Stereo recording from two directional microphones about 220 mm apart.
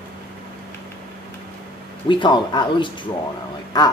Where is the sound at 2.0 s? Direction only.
20° left (ahead or behind).